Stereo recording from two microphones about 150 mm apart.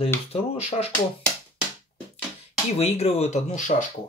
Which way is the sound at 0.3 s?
40° left (ahead or behind).